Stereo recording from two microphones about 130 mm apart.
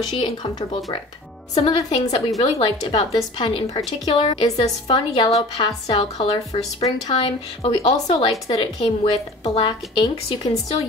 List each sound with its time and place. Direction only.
0.2 s a woman's voice: 35° left (ahead or behind)
9.7 s a woman's voice: 35° left (ahead or behind)